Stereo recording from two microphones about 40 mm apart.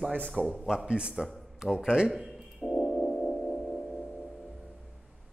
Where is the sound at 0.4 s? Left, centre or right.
Right.